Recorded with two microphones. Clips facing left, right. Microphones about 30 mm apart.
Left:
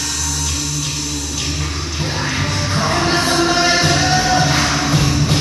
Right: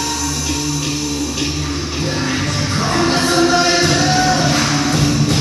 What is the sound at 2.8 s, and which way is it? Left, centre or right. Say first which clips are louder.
Music: right 1 dB; centre.